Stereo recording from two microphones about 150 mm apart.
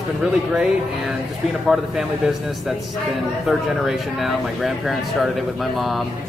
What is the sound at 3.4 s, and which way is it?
Speech, centre (ahead or behind).